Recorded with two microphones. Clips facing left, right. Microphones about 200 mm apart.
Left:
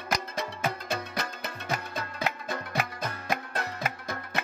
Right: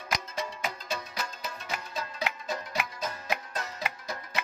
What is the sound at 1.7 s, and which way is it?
Music, 50° left (ahead or behind).